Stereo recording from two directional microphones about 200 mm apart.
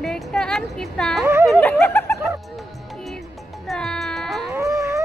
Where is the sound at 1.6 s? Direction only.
5° left (ahead or behind).